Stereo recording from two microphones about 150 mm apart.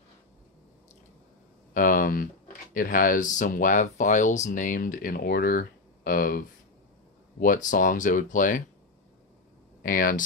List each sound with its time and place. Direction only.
1.7 s speech: 65° left (ahead or behind)
9.8 s speech: 70° left (ahead or behind)